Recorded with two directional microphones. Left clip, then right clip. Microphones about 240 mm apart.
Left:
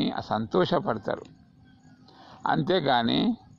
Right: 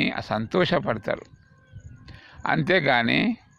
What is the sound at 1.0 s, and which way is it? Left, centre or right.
Speech, right.